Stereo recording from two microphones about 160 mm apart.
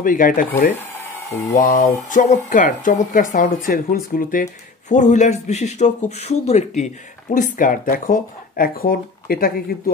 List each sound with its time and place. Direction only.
0.0 s speech: 60° left (ahead or behind)
1.5 s speech: 60° left (ahead or behind)